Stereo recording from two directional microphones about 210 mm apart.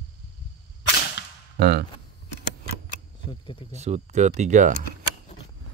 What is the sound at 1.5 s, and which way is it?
Speech, 50° right (ahead or behind).